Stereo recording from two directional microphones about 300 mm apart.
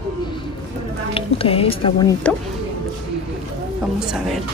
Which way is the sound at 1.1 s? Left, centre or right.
Centre.